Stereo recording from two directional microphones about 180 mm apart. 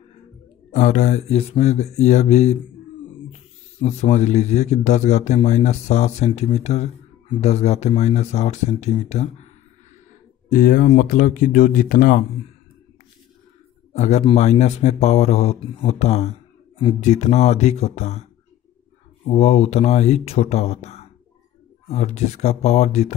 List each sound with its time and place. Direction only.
0.7 s a man's voice: 40° left (ahead or behind)
3.8 s a man's voice: 40° left (ahead or behind)
10.5 s speech: 50° left (ahead or behind)
13.9 s a man's voice: 40° left (ahead or behind)